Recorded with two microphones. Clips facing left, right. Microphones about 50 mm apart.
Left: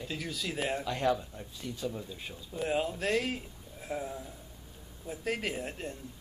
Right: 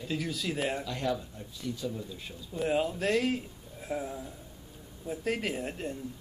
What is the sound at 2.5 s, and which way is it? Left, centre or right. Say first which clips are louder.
Speech: right 2 dB; centre.